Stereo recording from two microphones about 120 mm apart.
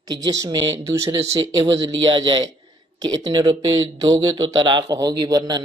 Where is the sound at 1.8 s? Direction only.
45° right (ahead or behind).